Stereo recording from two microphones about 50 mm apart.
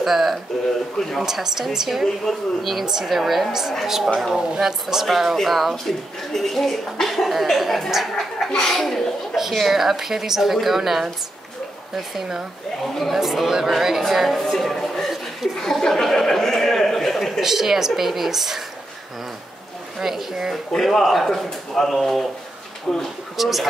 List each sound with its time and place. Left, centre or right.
0.0 s a woman's voice: centre
8.5 s speech: centre
12.2 s a woman's voice: centre
15.6 s a sound: centre
17.5 s a woman's voice: centre
20.0 s a woman's voice: centre
20.7 s speech: centre
22.9 s speech: centre
23.3 s speech: centre